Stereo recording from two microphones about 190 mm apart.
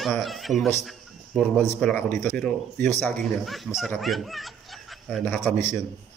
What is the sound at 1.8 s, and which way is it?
Speech, 5° left (ahead or behind).